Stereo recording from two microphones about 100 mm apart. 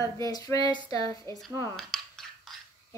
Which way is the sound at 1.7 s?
5° left (ahead or behind).